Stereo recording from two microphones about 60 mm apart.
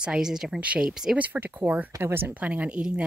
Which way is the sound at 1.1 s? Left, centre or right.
Right.